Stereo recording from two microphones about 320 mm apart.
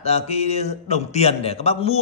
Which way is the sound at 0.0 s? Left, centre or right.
Centre.